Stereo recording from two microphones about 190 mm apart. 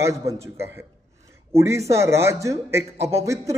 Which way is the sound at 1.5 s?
15° right (ahead or behind).